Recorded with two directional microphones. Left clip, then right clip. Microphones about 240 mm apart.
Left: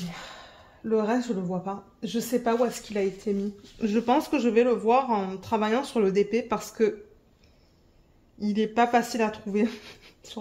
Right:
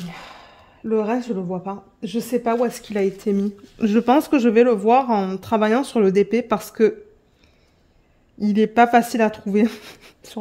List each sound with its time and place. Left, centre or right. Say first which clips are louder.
0.1 s speech: right 3 dB; right
8.4 s speech: right 8 dB; right